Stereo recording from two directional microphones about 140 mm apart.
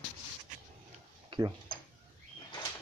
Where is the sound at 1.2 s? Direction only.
30° right (ahead or behind).